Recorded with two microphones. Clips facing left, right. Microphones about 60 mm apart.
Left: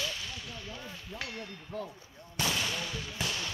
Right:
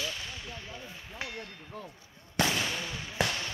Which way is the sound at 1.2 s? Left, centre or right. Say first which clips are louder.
Right 2 dB; right.